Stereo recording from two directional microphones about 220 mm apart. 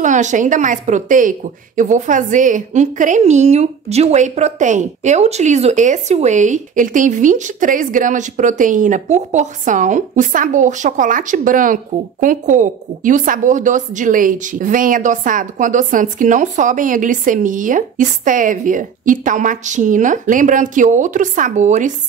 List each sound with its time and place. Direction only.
0.0 s a woman's voice: 35° right (ahead or behind)